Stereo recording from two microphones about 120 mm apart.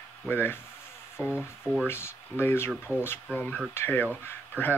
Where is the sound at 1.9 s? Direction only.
20° left (ahead or behind).